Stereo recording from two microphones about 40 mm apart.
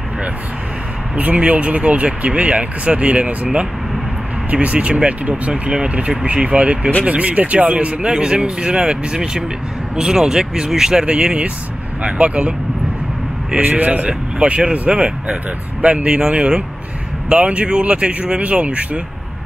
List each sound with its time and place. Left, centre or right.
1.1 s speech: right
4.5 s speech: right
5.5 s speech: centre
5.9 s speech: right
8.0 s speech: right
15.8 s speech: right